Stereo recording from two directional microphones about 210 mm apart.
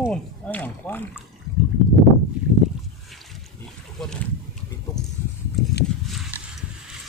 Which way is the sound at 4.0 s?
Centre (ahead or behind).